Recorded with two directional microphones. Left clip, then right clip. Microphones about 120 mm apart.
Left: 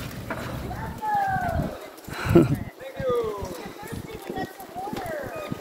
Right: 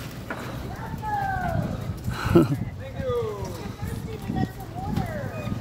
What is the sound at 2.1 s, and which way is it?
Clip-clop, 15° right (ahead or behind).